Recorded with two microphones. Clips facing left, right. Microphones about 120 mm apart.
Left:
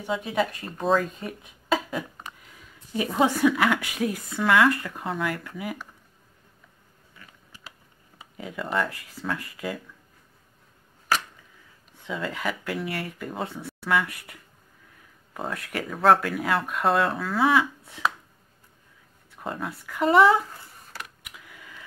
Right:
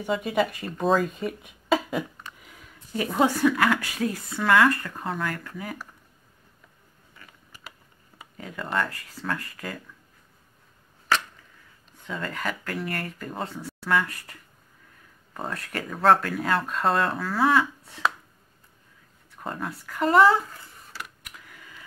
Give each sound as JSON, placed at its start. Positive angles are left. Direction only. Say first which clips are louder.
{"t": 0.0, "sound": "speech", "louder": "right 2 dB", "side_deg": 0}
{"t": 3.1, "sound": "speech", "louder": "even", "side_deg": 0}
{"t": 3.8, "sound": "speech", "louder": "left 1 dB", "side_deg": 15}
{"t": 8.4, "sound": "speech", "louder": "left 1 dB", "side_deg": 5}
{"t": 8.8, "sound": "speech", "louder": "even", "side_deg": 15}
{"t": 12.1, "sound": "speech", "louder": "left 1 dB", "side_deg": 10}
{"t": 15.3, "sound": "speech", "louder": "left 1 dB", "side_deg": 5}
{"t": 19.4, "sound": "speech", "louder": "even", "side_deg": 0}